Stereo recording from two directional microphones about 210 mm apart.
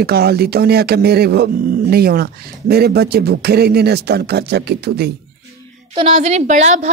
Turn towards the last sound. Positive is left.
turn(degrees=-35)  # may be behind; listen again after turning